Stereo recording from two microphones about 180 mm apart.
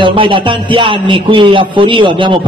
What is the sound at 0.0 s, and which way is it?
A man's voice, 30° right (ahead or behind).